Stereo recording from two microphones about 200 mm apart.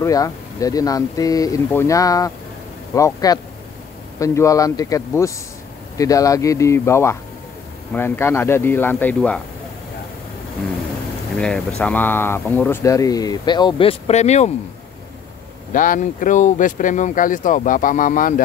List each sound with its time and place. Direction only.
0.0 s speech: 15° left (ahead or behind)
11.3 s speech: 5° left (ahead or behind); by 14.5 s 35° left (ahead or behind)
15.7 s speech: 40° left (ahead or behind)